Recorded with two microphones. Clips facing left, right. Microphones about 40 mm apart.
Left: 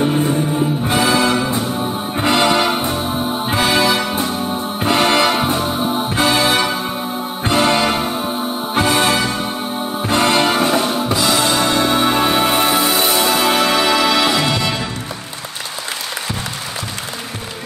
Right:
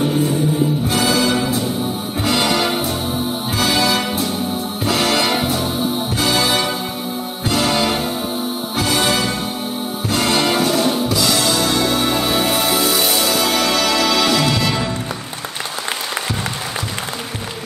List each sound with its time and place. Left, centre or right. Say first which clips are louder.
0.0 s music: left 1 dB; left